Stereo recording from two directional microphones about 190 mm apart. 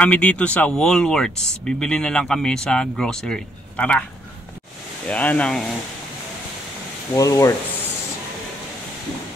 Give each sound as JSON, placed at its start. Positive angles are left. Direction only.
{"t": 0.0, "sound": "speech", "side_deg": 5}
{"t": 5.0, "sound": "speech", "side_deg": 5}
{"t": 7.2, "sound": "speech", "side_deg": 15}